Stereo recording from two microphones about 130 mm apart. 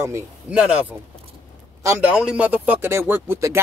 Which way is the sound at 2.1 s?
10° right (ahead or behind).